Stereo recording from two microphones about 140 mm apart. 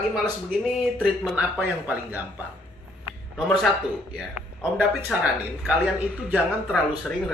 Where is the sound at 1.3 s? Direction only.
10° right (ahead or behind).